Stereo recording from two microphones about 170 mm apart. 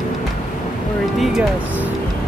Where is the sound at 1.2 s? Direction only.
Centre (ahead or behind).